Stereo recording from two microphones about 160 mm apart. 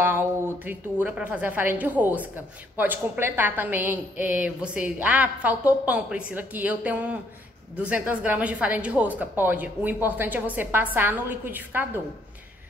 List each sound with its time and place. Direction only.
0.0 s a woman's voice: 15° right (ahead or behind)